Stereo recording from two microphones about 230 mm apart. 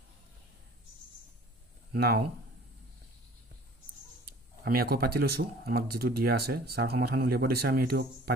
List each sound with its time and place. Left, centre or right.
2.0 s speech: right
4.3 s a sound: right
5.4 s speech: right